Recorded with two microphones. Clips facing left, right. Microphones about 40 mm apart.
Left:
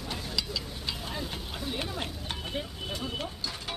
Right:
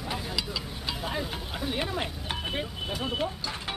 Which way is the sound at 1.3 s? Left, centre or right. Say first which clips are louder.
Right 3 dB; centre.